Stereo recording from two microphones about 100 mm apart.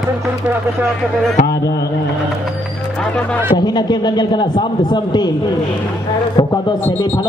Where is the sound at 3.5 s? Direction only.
45° left (ahead or behind).